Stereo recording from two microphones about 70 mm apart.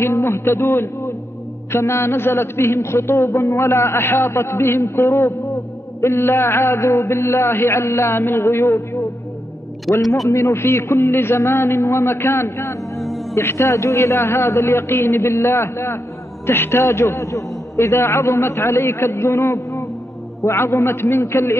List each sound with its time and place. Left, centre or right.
0.0 s a man's voice: left
10.0 s speech: centre
10.3 s a man's voice: left
12.9 s music: centre
13.3 s a man's voice: left